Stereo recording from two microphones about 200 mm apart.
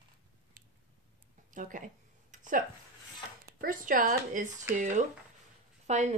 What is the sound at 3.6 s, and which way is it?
Speech, 40° right (ahead or behind).